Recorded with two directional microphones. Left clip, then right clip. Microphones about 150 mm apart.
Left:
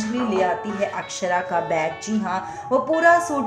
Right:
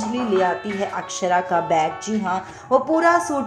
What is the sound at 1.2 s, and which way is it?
A woman's voice, 25° right (ahead or behind).